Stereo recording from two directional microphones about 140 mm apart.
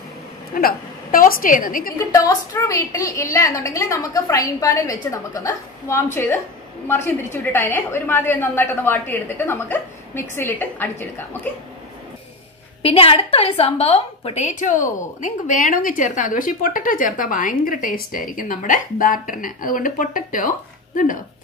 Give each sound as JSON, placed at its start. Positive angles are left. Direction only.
{"t": 0.6, "sound": "a woman's voice", "side_deg": 90}
{"t": 2.0, "sound": "a woman's voice", "side_deg": 25}
{"t": 12.8, "sound": "a woman's voice", "side_deg": 40}